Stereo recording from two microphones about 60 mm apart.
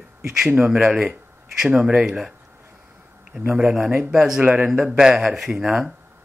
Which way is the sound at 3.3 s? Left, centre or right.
Centre.